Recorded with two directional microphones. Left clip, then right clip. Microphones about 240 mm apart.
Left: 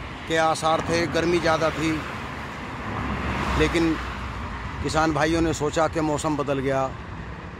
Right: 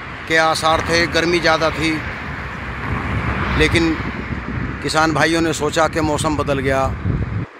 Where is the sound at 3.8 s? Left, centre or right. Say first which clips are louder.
Right 5 dB; left.